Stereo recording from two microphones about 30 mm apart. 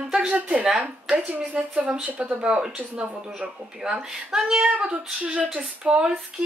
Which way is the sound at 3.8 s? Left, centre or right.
Right.